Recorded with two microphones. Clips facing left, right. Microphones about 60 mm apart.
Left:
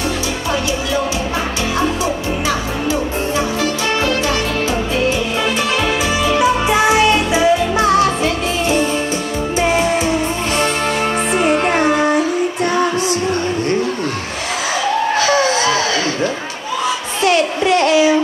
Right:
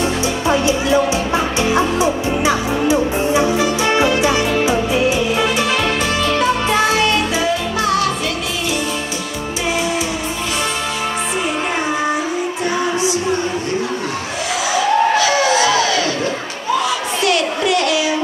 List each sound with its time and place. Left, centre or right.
0.5 s music: right
6.2 s music: centre; by 8.1 s left
9.6 s music: left
11.4 s music: left
15.1 s a sound: left
17.2 s a sound: left